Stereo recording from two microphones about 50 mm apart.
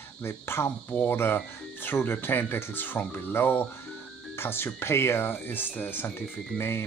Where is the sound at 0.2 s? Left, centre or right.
Left.